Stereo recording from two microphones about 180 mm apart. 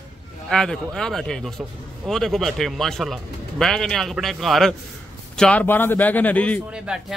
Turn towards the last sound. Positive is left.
turn(degrees=10)  # may be behind; listen again after turning